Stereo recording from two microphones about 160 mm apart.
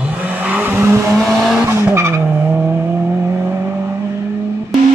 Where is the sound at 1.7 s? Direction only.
15° right (ahead or behind).